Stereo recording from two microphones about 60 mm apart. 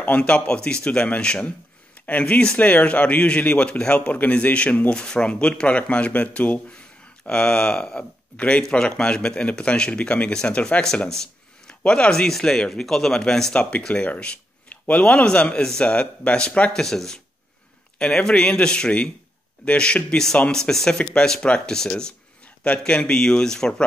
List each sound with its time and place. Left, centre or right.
0.0 s speech: left
16.7 s speech: centre